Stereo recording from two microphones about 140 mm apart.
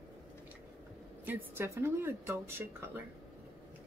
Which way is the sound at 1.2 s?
15° right (ahead or behind).